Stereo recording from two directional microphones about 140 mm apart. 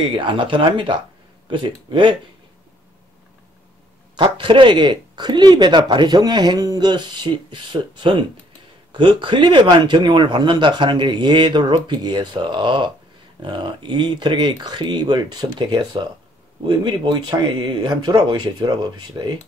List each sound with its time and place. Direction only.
0.0 s speech: 35° right (ahead or behind)
4.2 s speech: 35° right (ahead or behind)